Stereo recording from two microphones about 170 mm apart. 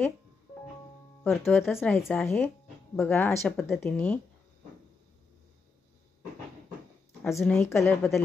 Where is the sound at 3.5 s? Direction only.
Centre (ahead or behind).